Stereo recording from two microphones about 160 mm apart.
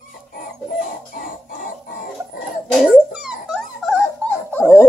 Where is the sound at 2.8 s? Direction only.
5° right (ahead or behind).